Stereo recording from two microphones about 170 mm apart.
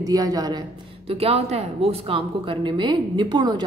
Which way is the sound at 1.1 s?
35° right (ahead or behind).